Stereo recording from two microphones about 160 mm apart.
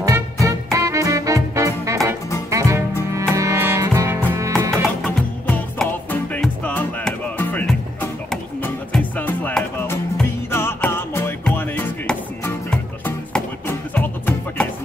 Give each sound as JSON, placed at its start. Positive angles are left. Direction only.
{"t": 0.0, "sound": "music", "side_deg": -20}
{"t": 5.0, "sound": "music", "side_deg": 10}